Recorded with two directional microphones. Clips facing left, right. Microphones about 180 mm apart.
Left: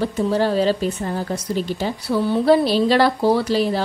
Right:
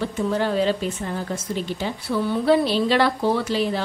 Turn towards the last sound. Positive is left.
turn(degrees=35)  # may be behind; listen again after turning